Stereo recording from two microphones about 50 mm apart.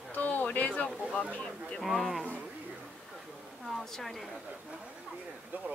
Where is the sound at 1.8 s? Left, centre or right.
Centre.